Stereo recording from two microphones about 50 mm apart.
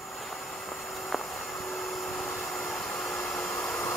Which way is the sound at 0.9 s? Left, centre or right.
Centre.